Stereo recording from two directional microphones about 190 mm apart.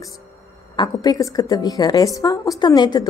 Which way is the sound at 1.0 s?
20° left (ahead or behind).